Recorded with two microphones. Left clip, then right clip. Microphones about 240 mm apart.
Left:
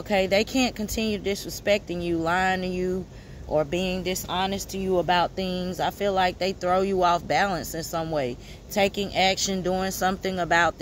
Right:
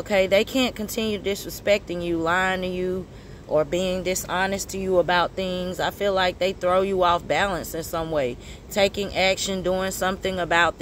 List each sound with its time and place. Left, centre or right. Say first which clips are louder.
0.1 s speech: right 3 dB; left